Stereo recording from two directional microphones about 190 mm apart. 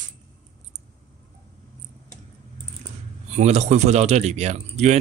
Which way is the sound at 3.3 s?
35° right (ahead or behind).